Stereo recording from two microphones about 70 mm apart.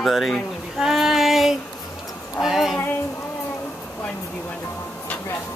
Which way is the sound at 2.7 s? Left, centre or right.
Left.